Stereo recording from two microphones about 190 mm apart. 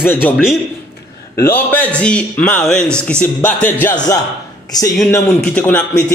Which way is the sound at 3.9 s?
20° left (ahead or behind).